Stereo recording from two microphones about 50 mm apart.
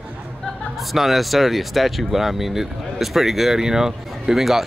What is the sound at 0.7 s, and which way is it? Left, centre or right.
Speech, centre.